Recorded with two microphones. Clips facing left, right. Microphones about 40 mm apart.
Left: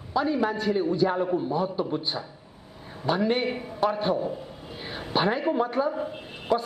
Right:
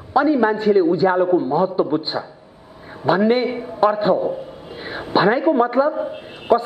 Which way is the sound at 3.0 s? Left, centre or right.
Right.